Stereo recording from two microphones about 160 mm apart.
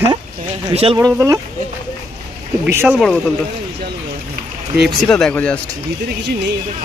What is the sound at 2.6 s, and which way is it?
Speech, 10° right (ahead or behind).